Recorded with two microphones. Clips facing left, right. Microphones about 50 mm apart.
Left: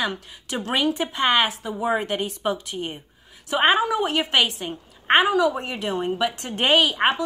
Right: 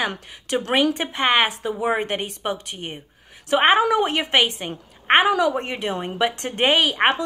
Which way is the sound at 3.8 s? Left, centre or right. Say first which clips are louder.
Right 3 dB; right.